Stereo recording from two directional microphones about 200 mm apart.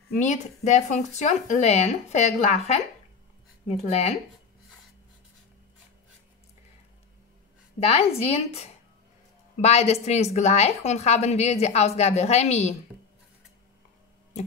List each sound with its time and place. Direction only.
0.1 s a woman's voice: 35° left (ahead or behind)
7.8 s a woman's voice: 30° left (ahead or behind)